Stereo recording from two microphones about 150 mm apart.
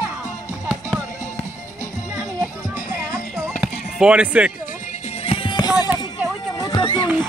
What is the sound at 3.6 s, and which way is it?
Music, 10° right (ahead or behind).